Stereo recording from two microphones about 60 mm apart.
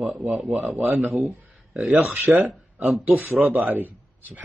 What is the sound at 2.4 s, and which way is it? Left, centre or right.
Speech, centre.